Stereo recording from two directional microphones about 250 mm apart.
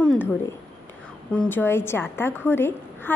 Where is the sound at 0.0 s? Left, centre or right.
Centre.